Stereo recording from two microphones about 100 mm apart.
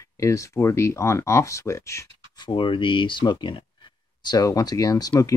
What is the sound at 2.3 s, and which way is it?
Speech, 55° left (ahead or behind).